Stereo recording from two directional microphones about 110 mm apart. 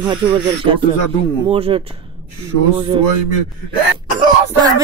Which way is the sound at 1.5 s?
55° right (ahead or behind).